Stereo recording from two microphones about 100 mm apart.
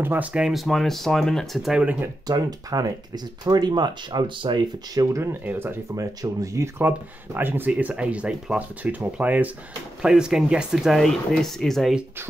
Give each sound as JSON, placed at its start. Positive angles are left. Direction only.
{"t": 0.0, "sound": "speech", "side_deg": -20}
{"t": 0.3, "sound": "speech", "side_deg": -5}
{"t": 2.2, "sound": "speech", "side_deg": -40}
{"t": 4.9, "sound": "speech", "side_deg": -35}
{"t": 5.4, "sound": "speech", "side_deg": -20}
{"t": 5.9, "sound": "speech", "side_deg": -35}
{"t": 7.3, "sound": "speech", "side_deg": -20}